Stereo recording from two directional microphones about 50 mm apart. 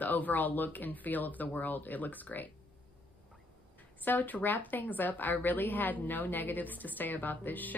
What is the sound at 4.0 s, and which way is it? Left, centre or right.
A woman's voice, left.